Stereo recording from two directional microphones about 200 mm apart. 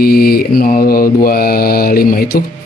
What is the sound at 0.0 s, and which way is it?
Speech, 50° left (ahead or behind).